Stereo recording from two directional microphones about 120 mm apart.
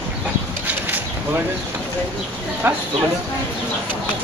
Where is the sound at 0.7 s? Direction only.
15° right (ahead or behind).